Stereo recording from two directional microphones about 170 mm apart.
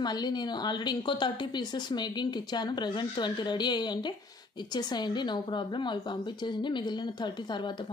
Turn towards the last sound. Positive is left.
turn(degrees=25)  # may be behind; listen again after turning